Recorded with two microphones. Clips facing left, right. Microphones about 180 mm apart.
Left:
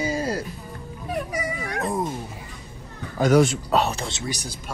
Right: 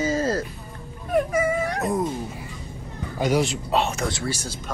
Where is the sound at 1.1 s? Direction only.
50° right (ahead or behind).